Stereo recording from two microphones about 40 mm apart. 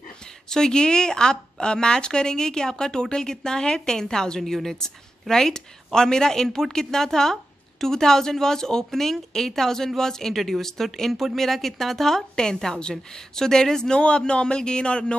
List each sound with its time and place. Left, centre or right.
0.2 s a woman's voice: centre